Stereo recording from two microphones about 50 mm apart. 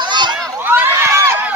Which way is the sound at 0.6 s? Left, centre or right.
Right.